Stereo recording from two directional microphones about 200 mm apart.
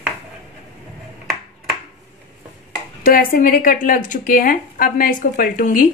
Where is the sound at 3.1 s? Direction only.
45° left (ahead or behind).